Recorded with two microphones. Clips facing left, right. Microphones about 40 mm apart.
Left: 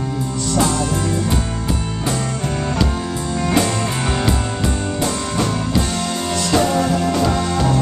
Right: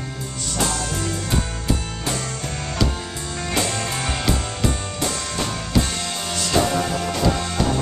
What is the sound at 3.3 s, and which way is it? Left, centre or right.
Music, centre.